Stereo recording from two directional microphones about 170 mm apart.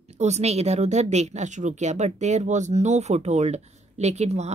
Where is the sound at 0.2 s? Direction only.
40° right (ahead or behind).